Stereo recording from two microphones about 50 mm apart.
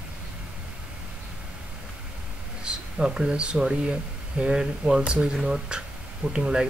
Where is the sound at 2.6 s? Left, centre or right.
Centre.